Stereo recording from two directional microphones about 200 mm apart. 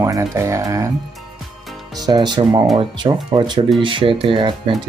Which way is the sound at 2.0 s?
20° right (ahead or behind).